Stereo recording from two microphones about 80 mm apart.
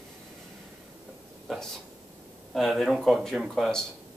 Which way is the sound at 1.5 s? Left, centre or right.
Centre.